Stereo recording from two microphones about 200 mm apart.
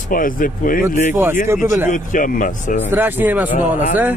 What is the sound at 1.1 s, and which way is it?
Speech, 10° right (ahead or behind).